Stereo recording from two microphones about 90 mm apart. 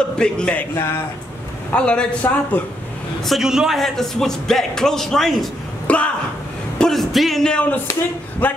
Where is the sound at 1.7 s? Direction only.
10° left (ahead or behind).